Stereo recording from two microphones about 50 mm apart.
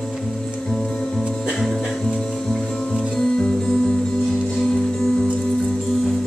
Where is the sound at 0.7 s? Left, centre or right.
Centre.